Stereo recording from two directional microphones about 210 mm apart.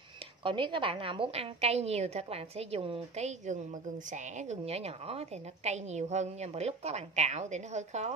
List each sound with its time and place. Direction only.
0.4 s a woman's voice: 25° right (ahead or behind)